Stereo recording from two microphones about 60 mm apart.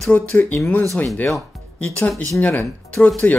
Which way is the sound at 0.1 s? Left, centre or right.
Left.